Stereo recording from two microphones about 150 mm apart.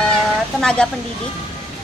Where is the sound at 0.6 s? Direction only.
5° left (ahead or behind).